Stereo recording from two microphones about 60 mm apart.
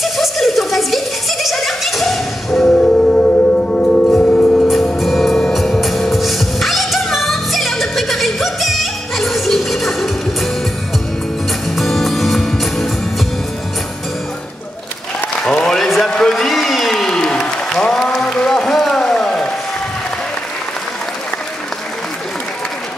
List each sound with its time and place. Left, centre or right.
0.0 s a sound: centre
2.6 s music: centre
4.3 s music: left
4.9 s music: centre
11.7 s music: centre
15.4 s applause: centre
16.1 s a sound: centre
17.0 s applause: centre